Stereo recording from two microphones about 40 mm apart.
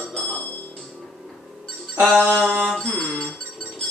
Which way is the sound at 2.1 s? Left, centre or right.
Left.